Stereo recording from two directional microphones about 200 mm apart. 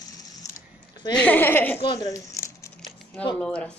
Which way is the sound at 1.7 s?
20° left (ahead or behind).